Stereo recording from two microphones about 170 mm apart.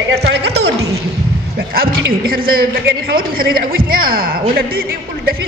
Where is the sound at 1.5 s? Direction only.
65° right (ahead or behind).